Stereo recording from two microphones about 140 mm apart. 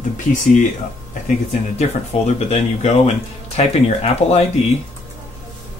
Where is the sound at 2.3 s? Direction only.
50° left (ahead or behind).